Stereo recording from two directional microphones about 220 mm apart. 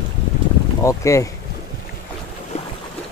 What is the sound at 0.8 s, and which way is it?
Speech, 15° left (ahead or behind).